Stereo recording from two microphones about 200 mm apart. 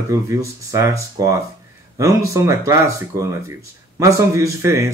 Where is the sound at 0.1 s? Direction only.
15° right (ahead or behind).